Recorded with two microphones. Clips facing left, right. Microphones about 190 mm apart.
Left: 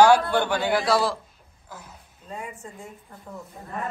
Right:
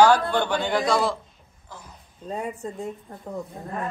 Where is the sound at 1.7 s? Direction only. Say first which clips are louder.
Left 1 dB; 5° left (ahead or behind).